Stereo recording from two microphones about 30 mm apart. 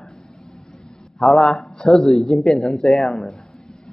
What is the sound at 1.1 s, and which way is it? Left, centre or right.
Speech, centre.